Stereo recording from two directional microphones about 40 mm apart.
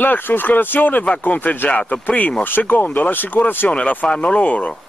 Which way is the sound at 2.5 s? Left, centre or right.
Left.